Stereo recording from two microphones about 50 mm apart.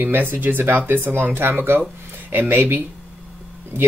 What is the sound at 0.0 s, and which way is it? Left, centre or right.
Speech, right.